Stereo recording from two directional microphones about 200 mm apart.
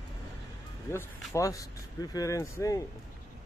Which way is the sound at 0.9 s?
15° left (ahead or behind).